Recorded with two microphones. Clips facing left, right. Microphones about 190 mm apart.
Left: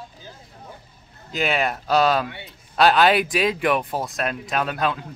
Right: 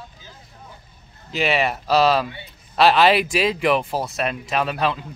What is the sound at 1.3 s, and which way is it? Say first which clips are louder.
Speech: right 2 dB; centre (ahead or behind).